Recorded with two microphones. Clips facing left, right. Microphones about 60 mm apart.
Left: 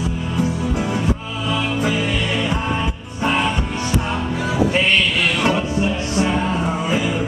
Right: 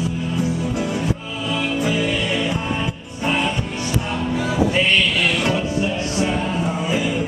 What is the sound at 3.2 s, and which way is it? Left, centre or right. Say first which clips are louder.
Music: left 2 dB; left.